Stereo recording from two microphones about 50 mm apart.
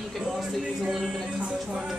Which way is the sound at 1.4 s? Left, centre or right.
Centre.